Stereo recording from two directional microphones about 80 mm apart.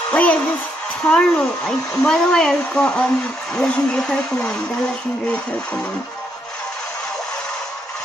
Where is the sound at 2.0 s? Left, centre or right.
Centre.